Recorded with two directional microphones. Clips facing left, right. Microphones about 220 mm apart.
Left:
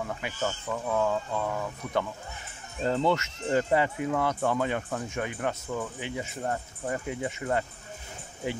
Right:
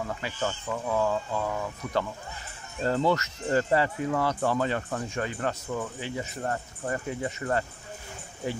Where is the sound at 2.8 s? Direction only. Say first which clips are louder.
Right 1 dB; centre (ahead or behind).